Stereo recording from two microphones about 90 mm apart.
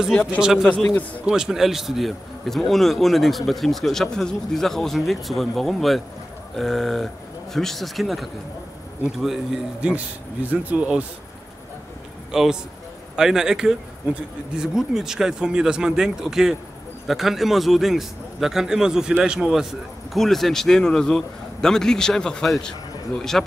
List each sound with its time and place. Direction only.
0.0 s a man's voice: 5° right (ahead or behind)
0.8 s a man's voice: 20° left (ahead or behind)
1.2 s a man's voice: 5° right (ahead or behind)
12.3 s a man's voice: 5° right (ahead or behind)